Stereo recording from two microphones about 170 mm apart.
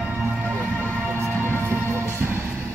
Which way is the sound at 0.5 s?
10° left (ahead or behind).